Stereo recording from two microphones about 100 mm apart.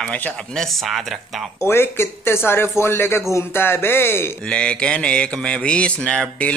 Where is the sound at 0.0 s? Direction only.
10° left (ahead or behind).